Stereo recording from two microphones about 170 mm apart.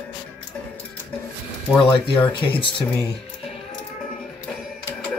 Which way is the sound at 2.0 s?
30° left (ahead or behind).